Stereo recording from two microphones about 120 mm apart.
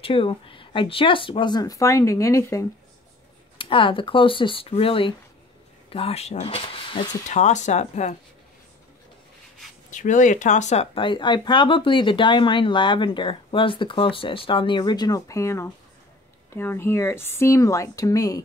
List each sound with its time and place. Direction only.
0.0 s speech: 50° left (ahead or behind); by 2.6 s 25° left (ahead or behind)
3.5 s speech: 45° left (ahead or behind)
7.2 s speech: 75° left (ahead or behind)
9.8 s speech: 90° left; by 10.9 s 70° left (ahead or behind)
11.0 s speech: 40° left (ahead or behind)